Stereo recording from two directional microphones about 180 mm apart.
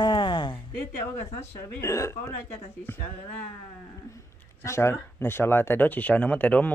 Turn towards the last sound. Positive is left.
turn(degrees=10)  # may be behind; listen again after turning